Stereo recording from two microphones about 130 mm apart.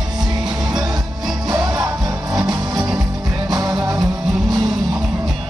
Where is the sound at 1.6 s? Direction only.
25° right (ahead or behind).